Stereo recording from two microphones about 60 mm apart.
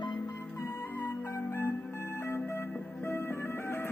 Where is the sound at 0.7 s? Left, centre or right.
Left.